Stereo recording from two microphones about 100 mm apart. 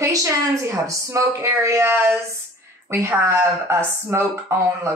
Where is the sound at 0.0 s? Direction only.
30° right (ahead or behind).